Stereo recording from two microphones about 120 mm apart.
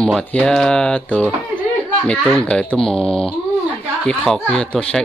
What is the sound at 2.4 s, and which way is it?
Speech, 10° left (ahead or behind).